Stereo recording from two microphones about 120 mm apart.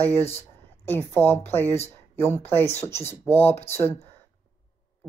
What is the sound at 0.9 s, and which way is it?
Speech, 20° left (ahead or behind).